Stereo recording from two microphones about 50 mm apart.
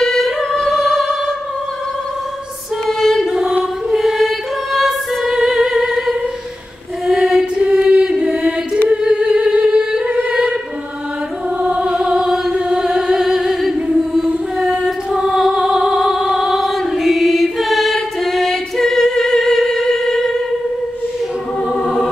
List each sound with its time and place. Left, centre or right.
0.0 s music: centre
2.9 s music: centre
5.3 s music: centre
7.1 s chant: centre
8.8 s music: centre
11.6 s music: right
12.0 s choir: centre
12.5 s chant: centre
13.8 s music: centre
14.7 s mantra: centre
15.2 s music: centre
16.7 s mantra: centre
21.8 s music: centre